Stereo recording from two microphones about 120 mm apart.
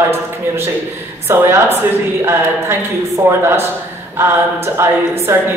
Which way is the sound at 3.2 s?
20° right (ahead or behind).